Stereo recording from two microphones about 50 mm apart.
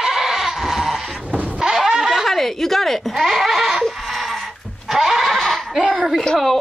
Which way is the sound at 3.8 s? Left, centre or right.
Centre.